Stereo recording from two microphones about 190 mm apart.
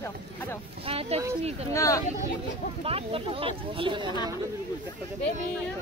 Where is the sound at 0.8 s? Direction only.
30° right (ahead or behind).